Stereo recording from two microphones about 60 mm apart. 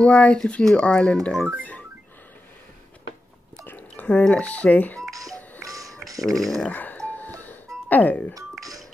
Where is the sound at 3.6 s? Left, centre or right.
Left.